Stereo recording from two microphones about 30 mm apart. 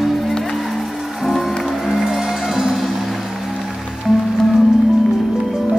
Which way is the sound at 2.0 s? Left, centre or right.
Centre.